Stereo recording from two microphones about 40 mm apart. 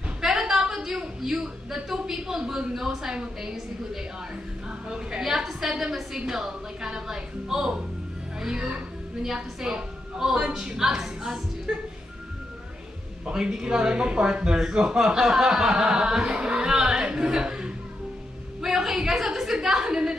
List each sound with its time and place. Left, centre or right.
0.2 s a sound: centre
2.7 s a woman's voice: centre
13.2 s a woman's voice: centre